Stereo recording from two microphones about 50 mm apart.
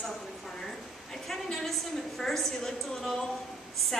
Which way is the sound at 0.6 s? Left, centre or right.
Centre.